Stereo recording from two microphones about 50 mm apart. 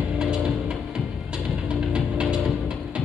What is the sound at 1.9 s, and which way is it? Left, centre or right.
Music, centre.